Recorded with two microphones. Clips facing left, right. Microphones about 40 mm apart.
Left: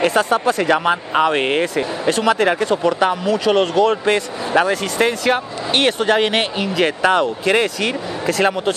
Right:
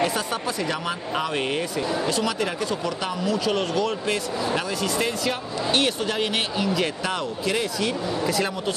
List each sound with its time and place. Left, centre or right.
0.0 s speech: left